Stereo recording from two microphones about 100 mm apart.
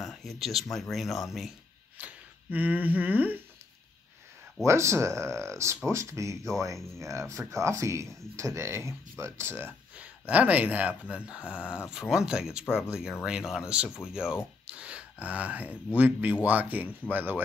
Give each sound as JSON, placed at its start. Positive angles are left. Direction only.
{"t": 0.0, "sound": "speech", "side_deg": 0}
{"t": 2.0, "sound": "speech", "side_deg": -15}
{"t": 4.6, "sound": "speech", "side_deg": -30}